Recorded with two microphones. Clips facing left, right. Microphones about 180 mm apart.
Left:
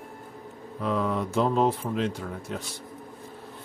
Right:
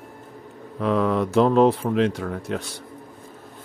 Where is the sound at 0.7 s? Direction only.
75° right (ahead or behind).